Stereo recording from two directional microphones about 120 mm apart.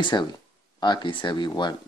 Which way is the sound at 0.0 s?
40° left (ahead or behind).